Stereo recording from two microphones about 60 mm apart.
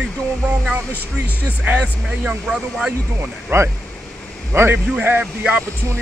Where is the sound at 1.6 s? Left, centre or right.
Right.